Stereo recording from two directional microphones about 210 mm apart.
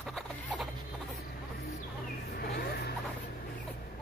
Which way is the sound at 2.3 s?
50° left (ahead or behind).